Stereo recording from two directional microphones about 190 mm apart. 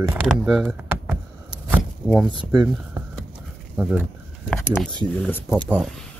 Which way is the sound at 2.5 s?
20° right (ahead or behind).